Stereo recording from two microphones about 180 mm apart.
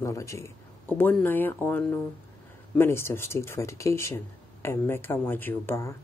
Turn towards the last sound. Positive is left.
turn(degrees=15)  # may be behind; listen again after turning